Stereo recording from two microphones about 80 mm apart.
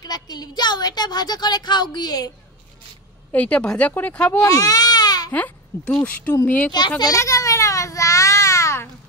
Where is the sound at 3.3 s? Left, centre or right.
Centre.